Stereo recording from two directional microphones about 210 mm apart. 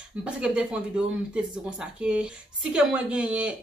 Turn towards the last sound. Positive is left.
turn(degrees=-5)  # may be behind; listen again after turning